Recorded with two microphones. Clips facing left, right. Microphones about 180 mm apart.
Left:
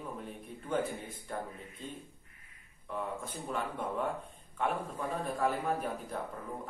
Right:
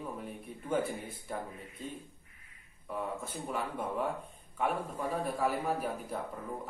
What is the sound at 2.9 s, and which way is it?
Speech, 5° right (ahead or behind).